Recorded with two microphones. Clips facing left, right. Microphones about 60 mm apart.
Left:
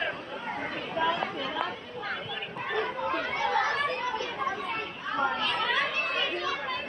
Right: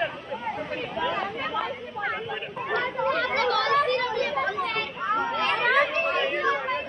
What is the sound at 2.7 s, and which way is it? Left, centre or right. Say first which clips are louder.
Chatter: right 5 dB; right.